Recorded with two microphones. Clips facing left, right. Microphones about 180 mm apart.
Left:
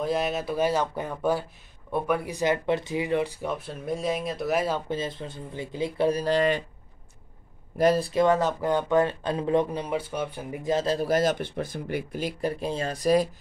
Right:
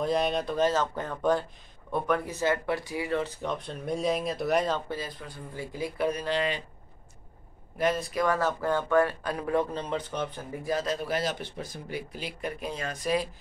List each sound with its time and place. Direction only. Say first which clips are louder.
0.0 s speech: even; 5° left (ahead or behind)
4.8 s speech: left 5 dB; 25° left (ahead or behind); by 6.6 s 45° left (ahead or behind)
7.7 s speech: left 6 dB; 35° left (ahead or behind)